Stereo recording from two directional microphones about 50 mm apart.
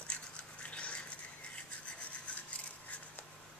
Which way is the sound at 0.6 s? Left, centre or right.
Left.